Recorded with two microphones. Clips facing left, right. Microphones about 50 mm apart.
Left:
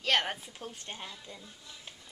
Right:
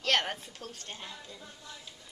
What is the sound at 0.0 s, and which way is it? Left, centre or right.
A woman's voice, centre.